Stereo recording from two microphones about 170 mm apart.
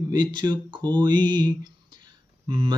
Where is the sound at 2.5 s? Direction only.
30° right (ahead or behind).